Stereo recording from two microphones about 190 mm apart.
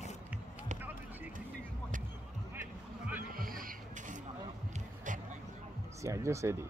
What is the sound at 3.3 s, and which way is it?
Music, 50° right (ahead or behind).